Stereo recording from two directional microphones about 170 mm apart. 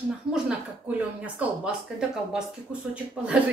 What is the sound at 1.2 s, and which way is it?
Speech, 5° right (ahead or behind).